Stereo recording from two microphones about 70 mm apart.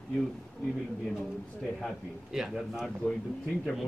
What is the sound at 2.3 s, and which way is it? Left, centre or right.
Speech, centre.